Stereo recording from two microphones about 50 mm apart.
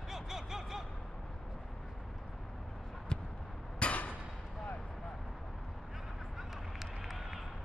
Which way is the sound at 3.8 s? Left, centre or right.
Left.